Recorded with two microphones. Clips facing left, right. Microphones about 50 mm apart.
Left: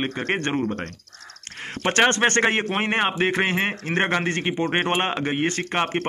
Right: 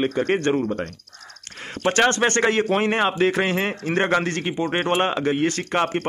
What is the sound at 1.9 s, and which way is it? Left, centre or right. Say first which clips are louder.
Speech: even; left.